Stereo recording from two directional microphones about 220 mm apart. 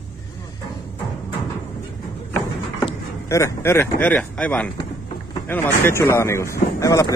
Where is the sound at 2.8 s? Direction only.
15° left (ahead or behind).